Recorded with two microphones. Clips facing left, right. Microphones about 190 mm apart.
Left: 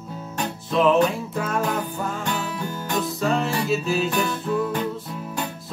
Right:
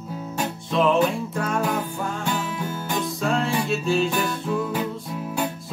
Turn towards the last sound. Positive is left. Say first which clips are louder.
# right 3 dB
turn(degrees=-5)  # may be behind; listen again after turning